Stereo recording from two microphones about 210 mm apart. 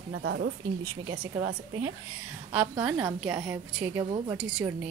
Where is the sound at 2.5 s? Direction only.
5° right (ahead or behind).